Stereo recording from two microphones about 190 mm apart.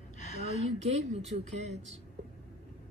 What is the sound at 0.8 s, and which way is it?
Speech, 35° right (ahead or behind).